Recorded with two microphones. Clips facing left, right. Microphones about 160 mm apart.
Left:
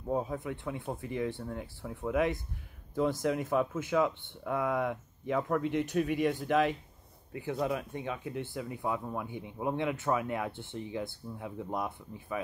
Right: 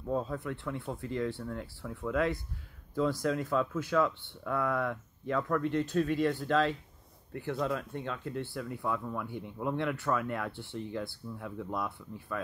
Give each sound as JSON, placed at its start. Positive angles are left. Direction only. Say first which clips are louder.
{"t": 0.1, "sound": "speech", "louder": "even", "side_deg": 15}